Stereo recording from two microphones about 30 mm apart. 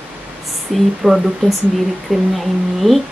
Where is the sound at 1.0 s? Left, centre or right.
Centre.